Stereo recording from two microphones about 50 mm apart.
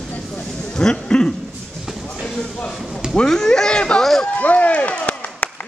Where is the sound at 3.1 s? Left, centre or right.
Centre.